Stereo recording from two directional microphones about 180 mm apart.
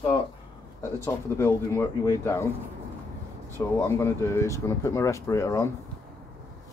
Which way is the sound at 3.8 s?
15° left (ahead or behind).